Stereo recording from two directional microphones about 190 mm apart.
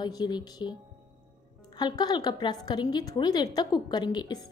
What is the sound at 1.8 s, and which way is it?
A woman's voice, 20° left (ahead or behind).